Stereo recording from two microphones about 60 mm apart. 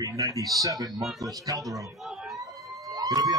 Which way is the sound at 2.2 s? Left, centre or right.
Centre.